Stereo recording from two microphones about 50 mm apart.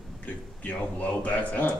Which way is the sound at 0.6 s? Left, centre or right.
Left.